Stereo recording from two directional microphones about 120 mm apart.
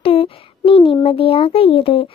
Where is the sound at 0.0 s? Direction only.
50° left (ahead or behind).